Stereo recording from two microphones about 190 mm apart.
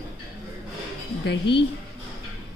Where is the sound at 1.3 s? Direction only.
60° left (ahead or behind).